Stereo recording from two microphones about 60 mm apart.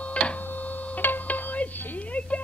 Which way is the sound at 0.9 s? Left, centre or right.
Left.